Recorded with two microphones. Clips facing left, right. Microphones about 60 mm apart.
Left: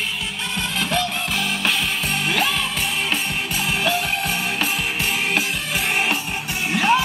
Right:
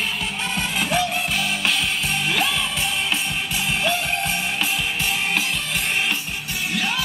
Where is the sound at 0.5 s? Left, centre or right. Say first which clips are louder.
Even; centre.